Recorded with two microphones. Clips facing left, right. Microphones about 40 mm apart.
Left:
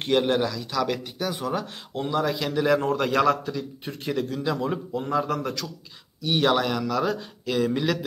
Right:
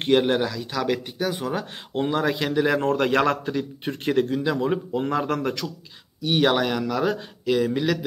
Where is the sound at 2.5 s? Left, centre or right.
Centre.